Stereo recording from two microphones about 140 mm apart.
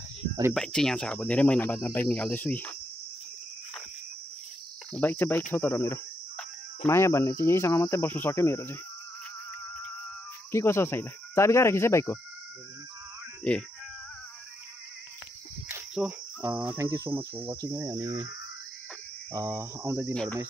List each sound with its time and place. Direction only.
0.6 s cricket: 5° left (ahead or behind)
4.9 s cricket: 10° left (ahead or behind)
7.0 s speech: 20° left (ahead or behind)
10.5 s speech: 20° left (ahead or behind)
13.4 s speech: 5° left (ahead or behind)
15.9 s cricket: 5° right (ahead or behind); by 18.3 s 25° right (ahead or behind)
19.3 s cricket: 20° right (ahead or behind)